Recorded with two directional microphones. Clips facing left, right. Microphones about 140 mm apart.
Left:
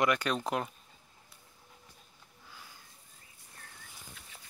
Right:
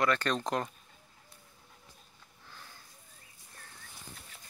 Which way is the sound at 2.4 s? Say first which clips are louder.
Right 1 dB; 10° left (ahead or behind).